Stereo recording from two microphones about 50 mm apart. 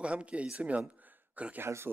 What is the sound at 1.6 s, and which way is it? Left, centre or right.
Speech, right.